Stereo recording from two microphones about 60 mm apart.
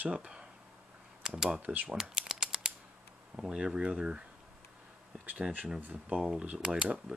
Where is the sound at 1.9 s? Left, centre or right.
Centre.